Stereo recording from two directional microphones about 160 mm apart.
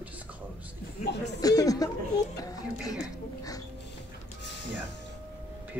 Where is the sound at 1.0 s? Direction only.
90° left.